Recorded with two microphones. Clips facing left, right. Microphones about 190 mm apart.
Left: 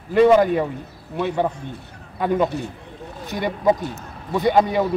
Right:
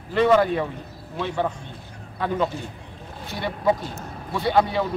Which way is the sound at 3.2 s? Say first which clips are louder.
Left 4 dB; 15° left (ahead or behind).